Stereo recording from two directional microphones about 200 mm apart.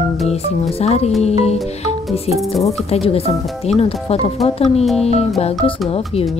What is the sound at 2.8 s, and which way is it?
Speech, 30° left (ahead or behind).